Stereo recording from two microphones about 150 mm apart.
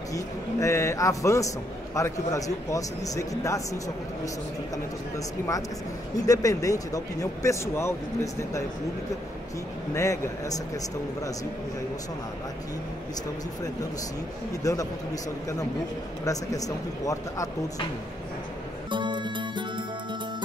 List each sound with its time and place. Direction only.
0.1 s speech: 20° left (ahead or behind)
6.1 s speech: 25° left (ahead or behind)
9.9 s speech: 20° left (ahead or behind)
14.6 s speech: 25° left (ahead or behind)
16.3 s speech: 25° left (ahead or behind)
18.9 s music: 30° right (ahead or behind)